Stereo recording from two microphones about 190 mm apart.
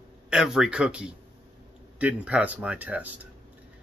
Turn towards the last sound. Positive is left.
turn(degrees=-5)  # may be behind; listen again after turning